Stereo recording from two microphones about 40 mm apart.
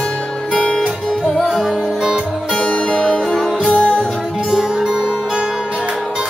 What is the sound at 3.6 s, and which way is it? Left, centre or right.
Music, left.